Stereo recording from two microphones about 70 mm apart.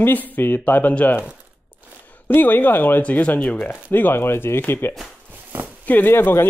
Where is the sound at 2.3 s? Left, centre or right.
Left.